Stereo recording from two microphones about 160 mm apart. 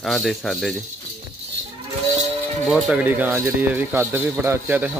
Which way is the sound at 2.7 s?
10° right (ahead or behind).